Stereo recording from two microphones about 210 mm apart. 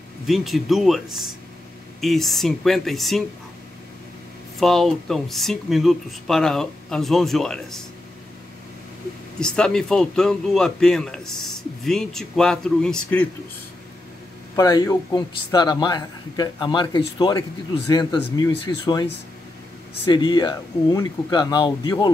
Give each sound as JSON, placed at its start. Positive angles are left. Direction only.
{"t": 0.3, "sound": "speech", "side_deg": 0}
{"t": 4.6, "sound": "speech", "side_deg": 0}
{"t": 9.4, "sound": "speech", "side_deg": 5}
{"t": 14.5, "sound": "a man's voice", "side_deg": 15}
{"t": 20.1, "sound": "a man's voice", "side_deg": 20}